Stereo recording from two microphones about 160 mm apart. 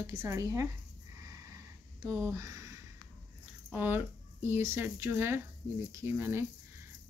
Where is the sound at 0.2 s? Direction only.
20° right (ahead or behind).